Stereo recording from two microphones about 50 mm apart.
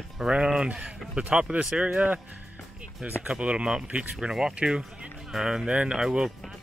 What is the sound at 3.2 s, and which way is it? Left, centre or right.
Speech, right.